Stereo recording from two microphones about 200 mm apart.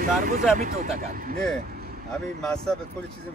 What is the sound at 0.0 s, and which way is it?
Speech, 45° right (ahead or behind).